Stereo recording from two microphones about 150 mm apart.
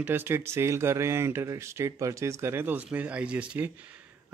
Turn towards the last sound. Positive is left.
turn(degrees=-10)  # may be behind; listen again after turning